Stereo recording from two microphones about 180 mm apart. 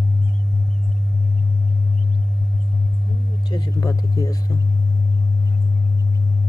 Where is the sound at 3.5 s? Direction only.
20° left (ahead or behind).